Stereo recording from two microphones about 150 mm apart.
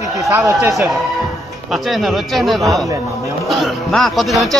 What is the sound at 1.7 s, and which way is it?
Speech, centre (ahead or behind).